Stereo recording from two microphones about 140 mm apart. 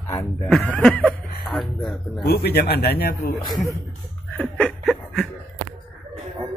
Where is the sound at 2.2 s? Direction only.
90° left.